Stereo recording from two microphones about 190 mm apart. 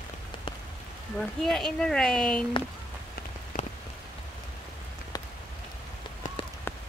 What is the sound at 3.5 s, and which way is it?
Rain on surface, 50° left (ahead or behind).